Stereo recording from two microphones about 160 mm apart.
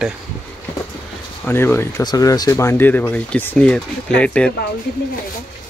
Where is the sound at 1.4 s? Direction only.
15° left (ahead or behind).